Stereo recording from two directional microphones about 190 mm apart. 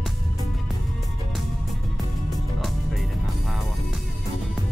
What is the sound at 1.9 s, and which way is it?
Music, centre (ahead or behind).